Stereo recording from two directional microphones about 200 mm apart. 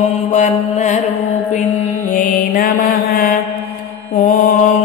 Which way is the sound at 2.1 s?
45° left (ahead or behind).